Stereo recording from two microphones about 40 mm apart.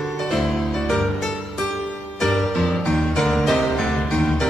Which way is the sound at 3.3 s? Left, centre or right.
Centre.